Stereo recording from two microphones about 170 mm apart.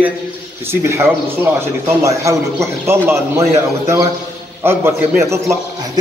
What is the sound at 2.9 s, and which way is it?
A man's voice, 15° right (ahead or behind).